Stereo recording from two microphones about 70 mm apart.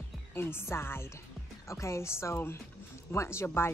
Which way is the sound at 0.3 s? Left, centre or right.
Left.